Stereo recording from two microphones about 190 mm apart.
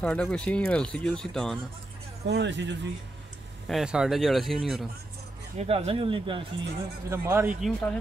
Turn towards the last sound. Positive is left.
turn(degrees=5)  # may be behind; listen again after turning